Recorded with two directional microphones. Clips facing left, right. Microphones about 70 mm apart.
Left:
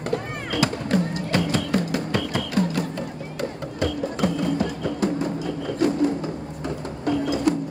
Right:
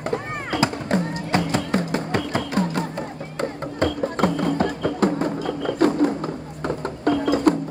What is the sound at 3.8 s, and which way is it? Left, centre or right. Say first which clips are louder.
Music: right 3 dB; right.